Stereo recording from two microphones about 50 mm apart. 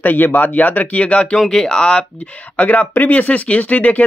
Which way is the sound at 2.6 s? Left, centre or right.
Left.